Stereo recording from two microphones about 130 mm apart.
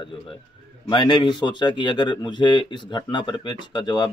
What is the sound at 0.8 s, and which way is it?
Speech, 35° left (ahead or behind).